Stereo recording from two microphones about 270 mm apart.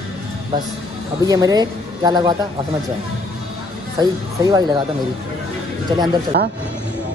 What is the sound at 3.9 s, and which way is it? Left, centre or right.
Speech, centre.